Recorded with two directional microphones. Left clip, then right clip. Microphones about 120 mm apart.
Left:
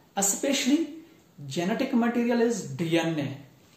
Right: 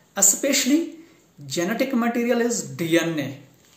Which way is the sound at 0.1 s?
20° left (ahead or behind).